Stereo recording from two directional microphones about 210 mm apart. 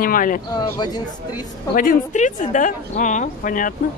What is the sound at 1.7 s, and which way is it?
A woman's voice, 40° left (ahead or behind).